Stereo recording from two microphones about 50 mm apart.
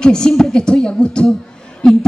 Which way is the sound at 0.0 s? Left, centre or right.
Centre.